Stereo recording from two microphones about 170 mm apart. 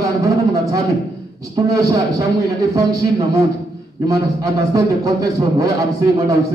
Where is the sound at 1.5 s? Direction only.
20° right (ahead or behind).